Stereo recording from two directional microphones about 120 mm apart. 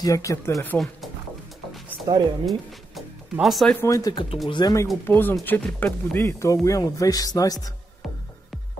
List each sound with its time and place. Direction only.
0.0 s speech: 25° left (ahead or behind)
2.1 s speech: 30° right (ahead or behind)
2.4 s speech: centre (ahead or behind)
3.8 s speech: 30° left (ahead or behind)
5.0 s speech: 15° left (ahead or behind)